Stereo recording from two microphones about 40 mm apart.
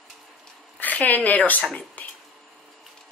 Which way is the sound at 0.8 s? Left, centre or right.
Left.